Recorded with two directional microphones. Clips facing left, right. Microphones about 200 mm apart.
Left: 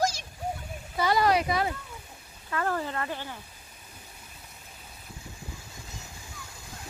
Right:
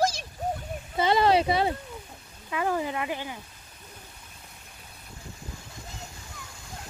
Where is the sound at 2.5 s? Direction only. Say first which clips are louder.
Right 2 dB; 15° right (ahead or behind).